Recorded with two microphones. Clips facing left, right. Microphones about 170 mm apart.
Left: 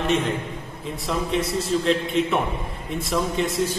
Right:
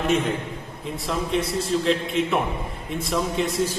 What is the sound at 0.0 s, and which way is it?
A man's voice, centre (ahead or behind).